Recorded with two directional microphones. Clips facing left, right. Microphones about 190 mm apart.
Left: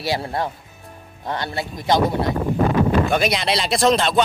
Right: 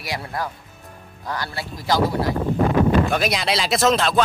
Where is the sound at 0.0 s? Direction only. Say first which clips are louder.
Left 5 dB; 30° left (ahead or behind).